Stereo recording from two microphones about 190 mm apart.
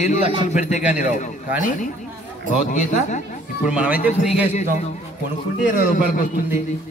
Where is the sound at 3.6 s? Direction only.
5° right (ahead or behind).